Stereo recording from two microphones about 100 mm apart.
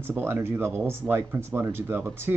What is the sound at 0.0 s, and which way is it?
Speech, 25° right (ahead or behind).